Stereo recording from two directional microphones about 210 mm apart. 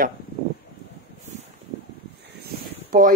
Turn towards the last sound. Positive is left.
turn(degrees=-40)  # may be behind; listen again after turning